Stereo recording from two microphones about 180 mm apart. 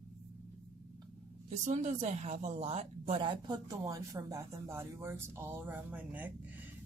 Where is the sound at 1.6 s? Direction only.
40° right (ahead or behind).